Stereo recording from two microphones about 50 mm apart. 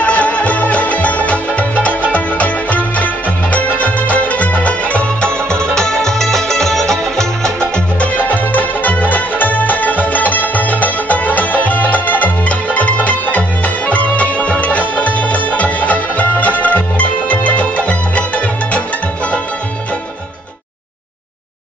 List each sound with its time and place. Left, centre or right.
0.0 s music: left
8.3 s music: left